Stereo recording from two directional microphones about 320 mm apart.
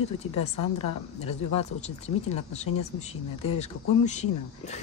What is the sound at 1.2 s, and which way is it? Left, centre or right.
Speech, centre.